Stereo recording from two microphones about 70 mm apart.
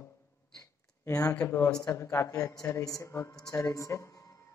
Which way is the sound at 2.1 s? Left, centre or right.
Left.